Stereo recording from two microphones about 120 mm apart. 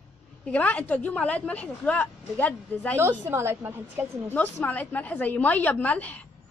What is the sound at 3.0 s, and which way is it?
A woman's voice, 20° right (ahead or behind).